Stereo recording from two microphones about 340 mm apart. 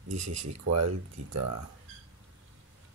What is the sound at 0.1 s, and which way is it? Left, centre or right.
Speech, right.